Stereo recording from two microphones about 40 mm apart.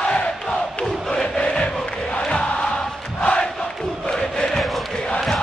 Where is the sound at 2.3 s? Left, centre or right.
Left.